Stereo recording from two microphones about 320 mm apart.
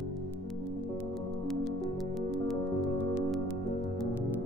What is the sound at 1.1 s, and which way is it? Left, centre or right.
Music, centre.